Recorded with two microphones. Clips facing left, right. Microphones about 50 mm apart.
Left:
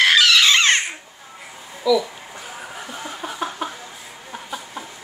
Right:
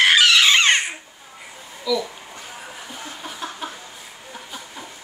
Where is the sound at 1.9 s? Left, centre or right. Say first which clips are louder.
Left 5 dB; centre.